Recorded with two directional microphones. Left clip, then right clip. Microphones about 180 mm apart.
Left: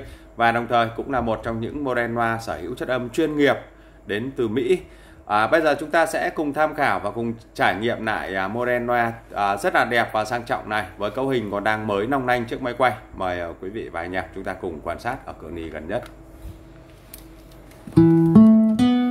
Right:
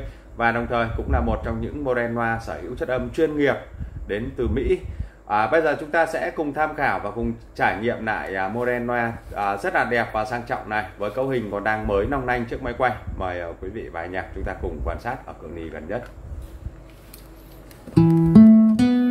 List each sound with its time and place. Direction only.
0.4 s speech: 45° left (ahead or behind)
17.9 s music: 10° right (ahead or behind)
18.4 s guitar: centre (ahead or behind)